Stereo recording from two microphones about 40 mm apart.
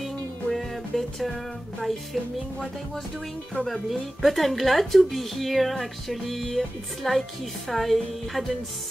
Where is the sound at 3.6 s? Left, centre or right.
Centre.